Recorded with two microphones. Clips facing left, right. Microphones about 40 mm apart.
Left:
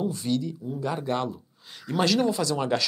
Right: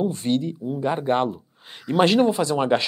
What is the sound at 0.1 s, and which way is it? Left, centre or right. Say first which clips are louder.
Speech: right 4 dB; right.